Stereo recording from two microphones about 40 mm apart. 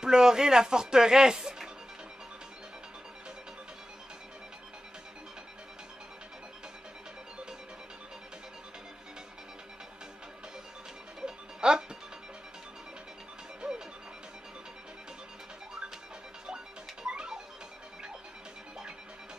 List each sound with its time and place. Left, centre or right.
0.0 s a woman's voice: centre
11.1 s music: centre
13.6 s music: centre
16.4 s music: right